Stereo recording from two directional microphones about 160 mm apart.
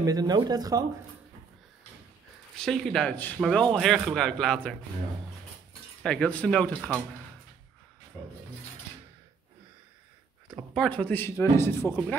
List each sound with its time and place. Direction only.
0.0 s speech: 25° right (ahead or behind)
2.5 s a man's voice: 5° left (ahead or behind)
6.0 s speech: 5° left (ahead or behind)
8.2 s speech: 30° left (ahead or behind)
10.7 s speech: 5° left (ahead or behind)